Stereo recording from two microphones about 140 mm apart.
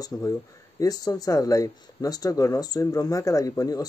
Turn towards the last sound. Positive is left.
turn(degrees=25)  # may be behind; listen again after turning